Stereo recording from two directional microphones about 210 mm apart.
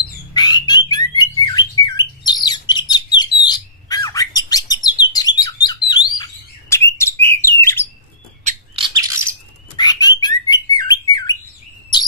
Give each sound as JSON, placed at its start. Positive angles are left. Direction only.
{"t": 0.3, "sound": "squawk", "side_deg": 20}
{"t": 1.9, "sound": "bird", "side_deg": 20}
{"t": 8.7, "sound": "bird", "side_deg": -20}
{"t": 9.8, "sound": "bird", "side_deg": 20}